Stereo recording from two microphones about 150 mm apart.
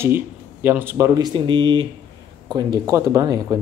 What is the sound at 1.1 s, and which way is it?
A man's voice, 30° right (ahead or behind).